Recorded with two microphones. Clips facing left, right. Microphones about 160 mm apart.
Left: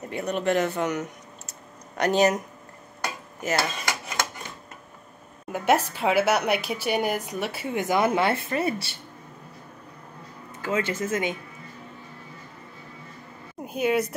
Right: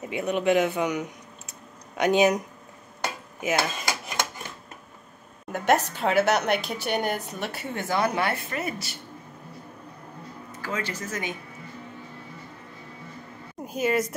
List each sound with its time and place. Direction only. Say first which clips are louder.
0.0 s speech: right 1 dB; centre (ahead or behind)
3.3 s dishes: even; centre (ahead or behind)
5.5 s a woman's voice: even; 5° left (ahead or behind)
7.8 s speech: left 3 dB; 20° left (ahead or behind)
10.6 s speech: left 6 dB; 25° left (ahead or behind)
13.6 s speech: left 1 dB; centre (ahead or behind)